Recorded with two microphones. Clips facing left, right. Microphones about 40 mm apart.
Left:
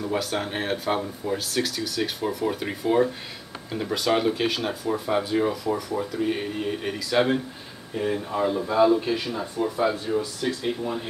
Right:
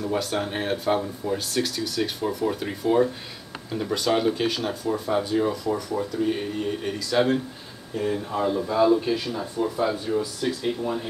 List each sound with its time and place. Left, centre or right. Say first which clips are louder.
0.0 s speech: right 1 dB; centre